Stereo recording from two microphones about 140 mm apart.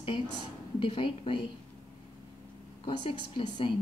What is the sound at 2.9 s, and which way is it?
Speech, 40° left (ahead or behind).